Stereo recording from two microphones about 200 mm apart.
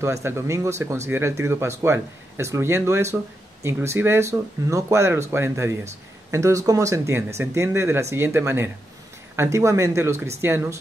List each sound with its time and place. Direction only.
0.0 s speech: 15° right (ahead or behind)